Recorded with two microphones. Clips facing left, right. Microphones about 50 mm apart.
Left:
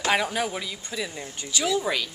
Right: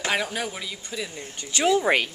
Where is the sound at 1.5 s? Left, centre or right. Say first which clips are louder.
Right 5 dB; right.